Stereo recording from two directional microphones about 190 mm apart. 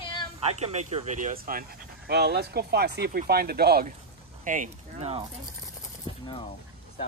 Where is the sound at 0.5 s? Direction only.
35° right (ahead or behind); by 3.9 s 55° right (ahead or behind).